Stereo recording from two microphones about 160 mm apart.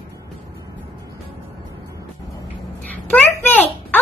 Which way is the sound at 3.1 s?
10° left (ahead or behind).